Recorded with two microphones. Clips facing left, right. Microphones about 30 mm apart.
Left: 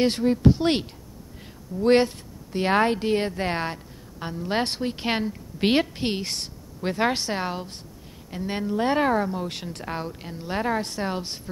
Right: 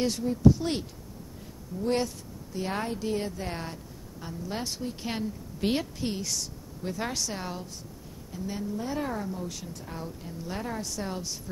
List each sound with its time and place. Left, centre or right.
0.0 s a woman's voice: left